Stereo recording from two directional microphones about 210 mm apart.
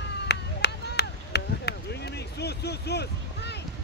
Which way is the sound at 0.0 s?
55° left (ahead or behind).